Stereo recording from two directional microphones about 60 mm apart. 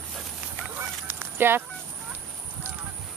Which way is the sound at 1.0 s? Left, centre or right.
Right.